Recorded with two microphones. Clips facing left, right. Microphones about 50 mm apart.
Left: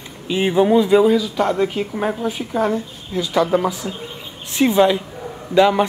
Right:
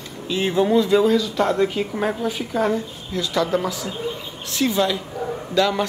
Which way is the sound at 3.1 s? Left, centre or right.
Centre.